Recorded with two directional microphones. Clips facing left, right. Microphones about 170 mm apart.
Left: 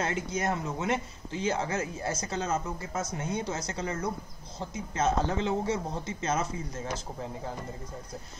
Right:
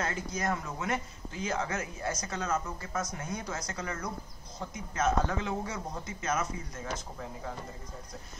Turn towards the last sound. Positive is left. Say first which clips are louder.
# left 3 dB
turn(degrees=30)  # may be behind; listen again after turning